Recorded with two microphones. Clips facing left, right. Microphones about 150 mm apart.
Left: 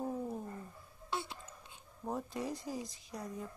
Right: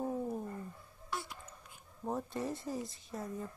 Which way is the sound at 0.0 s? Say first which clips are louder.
Right 2 dB; centre (ahead or behind).